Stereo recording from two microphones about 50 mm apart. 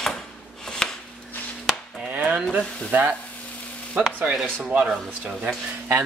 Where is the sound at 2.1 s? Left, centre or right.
Right.